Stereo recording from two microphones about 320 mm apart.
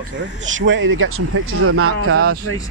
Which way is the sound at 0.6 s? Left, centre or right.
Right.